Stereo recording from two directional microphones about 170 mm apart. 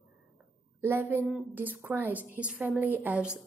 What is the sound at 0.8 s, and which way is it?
Speech, 15° right (ahead or behind).